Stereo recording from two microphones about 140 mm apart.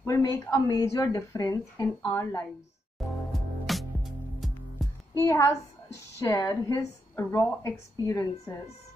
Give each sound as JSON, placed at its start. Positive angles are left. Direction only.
{"t": 0.0, "sound": "a woman's voice", "side_deg": 25}
{"t": 3.0, "sound": "music", "side_deg": 0}
{"t": 5.2, "sound": "a woman's voice", "side_deg": 20}